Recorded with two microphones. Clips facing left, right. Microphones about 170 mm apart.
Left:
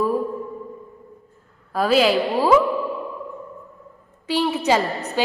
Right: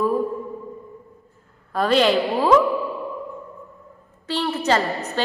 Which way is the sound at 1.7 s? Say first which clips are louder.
Even; 5° left (ahead or behind).